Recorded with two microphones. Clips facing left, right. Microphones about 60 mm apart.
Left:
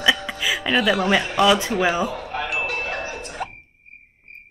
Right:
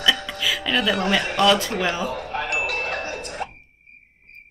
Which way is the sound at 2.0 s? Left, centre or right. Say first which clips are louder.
Left 1 dB; right.